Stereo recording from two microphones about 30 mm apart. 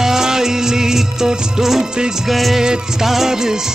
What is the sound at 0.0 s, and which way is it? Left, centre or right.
Music, centre.